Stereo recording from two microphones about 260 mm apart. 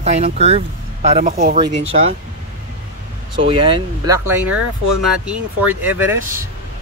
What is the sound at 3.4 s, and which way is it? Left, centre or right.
Speech, centre.